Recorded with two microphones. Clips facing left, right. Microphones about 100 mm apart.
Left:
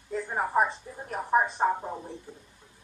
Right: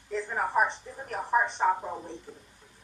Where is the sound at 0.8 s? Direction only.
25° left (ahead or behind).